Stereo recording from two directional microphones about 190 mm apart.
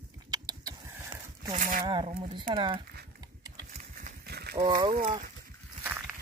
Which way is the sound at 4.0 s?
55° right (ahead or behind).